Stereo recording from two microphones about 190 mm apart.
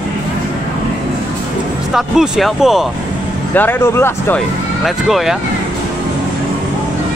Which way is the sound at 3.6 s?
10° left (ahead or behind).